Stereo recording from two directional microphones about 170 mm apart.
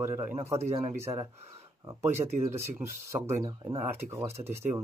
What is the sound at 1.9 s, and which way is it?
A man's voice, 15° right (ahead or behind).